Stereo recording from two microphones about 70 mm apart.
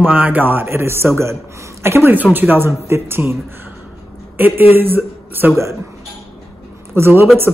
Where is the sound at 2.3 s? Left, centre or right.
Right.